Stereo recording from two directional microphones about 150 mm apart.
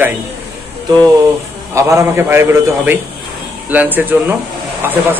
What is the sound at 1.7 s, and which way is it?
Speech, 15° right (ahead or behind).